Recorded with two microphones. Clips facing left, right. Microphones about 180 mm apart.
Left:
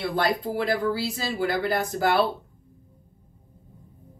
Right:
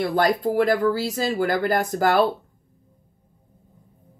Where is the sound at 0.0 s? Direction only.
45° right (ahead or behind).